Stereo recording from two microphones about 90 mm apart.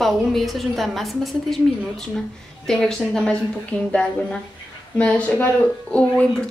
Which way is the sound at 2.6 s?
5° left (ahead or behind).